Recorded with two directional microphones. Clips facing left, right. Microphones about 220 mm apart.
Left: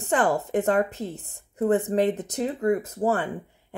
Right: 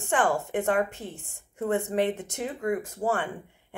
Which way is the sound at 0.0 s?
40° left (ahead or behind).